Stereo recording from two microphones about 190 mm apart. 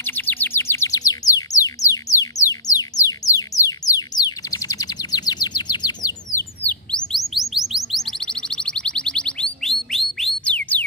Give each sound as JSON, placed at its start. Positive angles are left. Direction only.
{"t": 0.0, "sound": "bird", "side_deg": 10}
{"t": 6.6, "sound": "chirp", "side_deg": 5}